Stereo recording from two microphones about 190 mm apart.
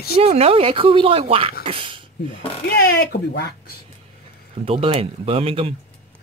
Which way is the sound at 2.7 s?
60° left (ahead or behind).